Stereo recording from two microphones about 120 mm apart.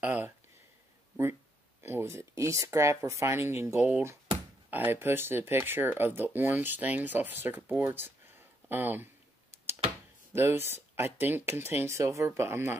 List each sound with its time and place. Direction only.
0.0 s speech: 15° right (ahead or behind)
1.8 s speech: 20° right (ahead or behind)
10.3 s speech: 20° right (ahead or behind)